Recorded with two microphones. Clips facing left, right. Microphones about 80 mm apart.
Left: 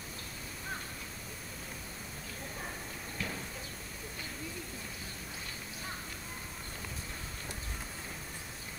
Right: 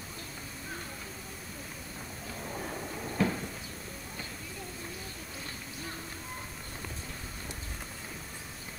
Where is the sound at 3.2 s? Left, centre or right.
Right.